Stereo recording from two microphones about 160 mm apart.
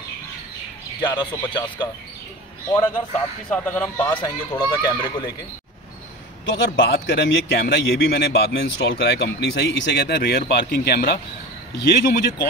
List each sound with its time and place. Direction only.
1.0 s speech: 30° left (ahead or behind)
3.4 s a man's voice: 10° left (ahead or behind)
4.1 s speech: 30° left (ahead or behind)
6.4 s a man's voice: 90° left
11.7 s a man's voice: 90° left